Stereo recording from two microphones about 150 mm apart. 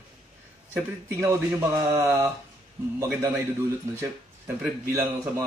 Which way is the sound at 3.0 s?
15° right (ahead or behind).